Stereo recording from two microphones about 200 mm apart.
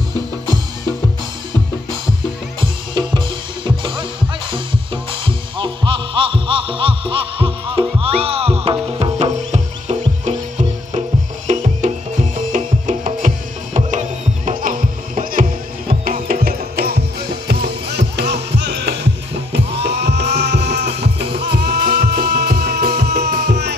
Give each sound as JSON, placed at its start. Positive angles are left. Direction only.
{"t": 2.9, "sound": "drum kit", "side_deg": -25}
{"t": 5.2, "sound": "music", "side_deg": -25}